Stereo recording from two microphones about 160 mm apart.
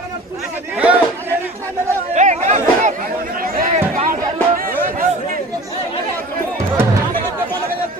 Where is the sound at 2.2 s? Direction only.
50° right (ahead or behind).